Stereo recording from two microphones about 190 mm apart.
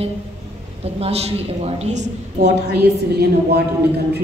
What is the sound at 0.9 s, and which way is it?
A woman's voice, 30° right (ahead or behind).